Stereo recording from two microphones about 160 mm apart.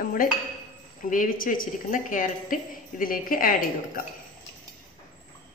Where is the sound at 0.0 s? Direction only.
60° left (ahead or behind).